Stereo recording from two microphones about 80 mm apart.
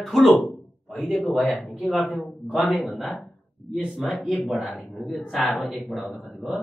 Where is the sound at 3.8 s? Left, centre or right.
Centre.